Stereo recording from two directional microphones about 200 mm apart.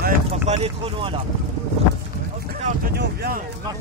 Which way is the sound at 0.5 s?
25° right (ahead or behind).